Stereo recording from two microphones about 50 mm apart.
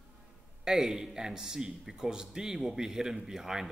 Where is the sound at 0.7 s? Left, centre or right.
Centre.